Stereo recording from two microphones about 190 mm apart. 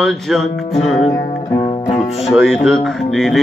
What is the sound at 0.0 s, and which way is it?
Music, centre (ahead or behind).